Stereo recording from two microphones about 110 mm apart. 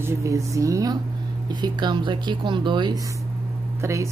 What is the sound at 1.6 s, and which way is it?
Speech, 45° right (ahead or behind).